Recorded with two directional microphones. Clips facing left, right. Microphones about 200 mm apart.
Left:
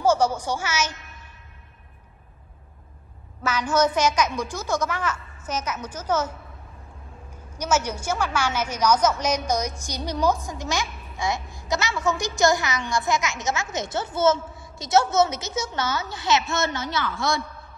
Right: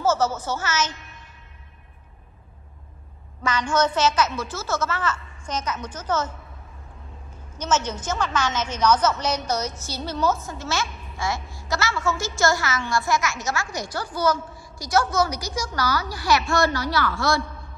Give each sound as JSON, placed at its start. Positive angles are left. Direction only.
{"t": 0.0, "sound": "a woman's voice", "side_deg": 15}
{"t": 3.4, "sound": "a woman's voice", "side_deg": 10}
{"t": 7.5, "sound": "a woman's voice", "side_deg": 10}